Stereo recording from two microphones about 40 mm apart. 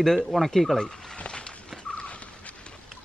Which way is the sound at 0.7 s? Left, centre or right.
Centre.